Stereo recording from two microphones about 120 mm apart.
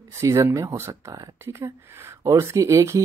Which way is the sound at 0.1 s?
25° right (ahead or behind).